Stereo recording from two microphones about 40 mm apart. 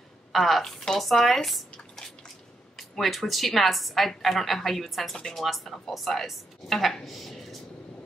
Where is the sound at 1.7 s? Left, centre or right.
Left.